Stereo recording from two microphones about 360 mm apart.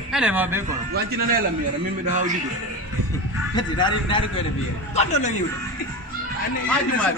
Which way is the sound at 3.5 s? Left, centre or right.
Centre.